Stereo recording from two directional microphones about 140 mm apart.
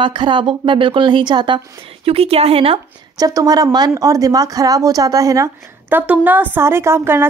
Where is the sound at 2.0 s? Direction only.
45° right (ahead or behind).